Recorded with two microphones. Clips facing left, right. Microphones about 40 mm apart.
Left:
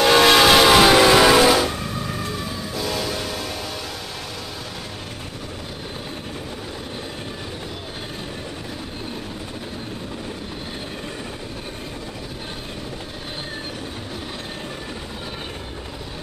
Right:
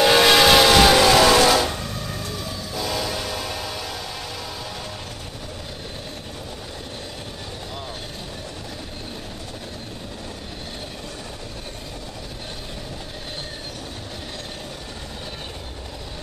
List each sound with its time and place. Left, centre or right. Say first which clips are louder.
0.0 s train: left 1 dB; centre
2.8 s train: even; centre